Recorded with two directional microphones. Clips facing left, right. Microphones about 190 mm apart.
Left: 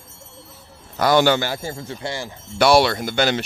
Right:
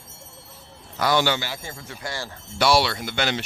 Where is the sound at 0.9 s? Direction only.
45° left (ahead or behind).